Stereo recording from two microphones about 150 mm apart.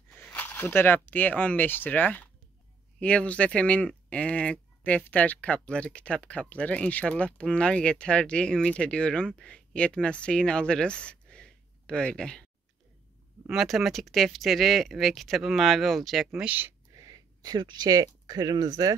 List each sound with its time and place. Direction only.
0.1 s speech: 10° left (ahead or behind)
13.5 s speech: centre (ahead or behind); by 18.9 s 25° right (ahead or behind)